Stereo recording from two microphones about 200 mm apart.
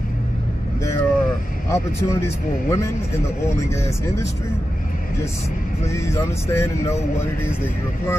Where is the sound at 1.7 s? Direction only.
15° left (ahead or behind).